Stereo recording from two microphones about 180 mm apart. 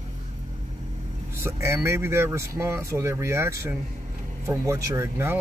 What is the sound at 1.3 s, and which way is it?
Speech, 15° right (ahead or behind).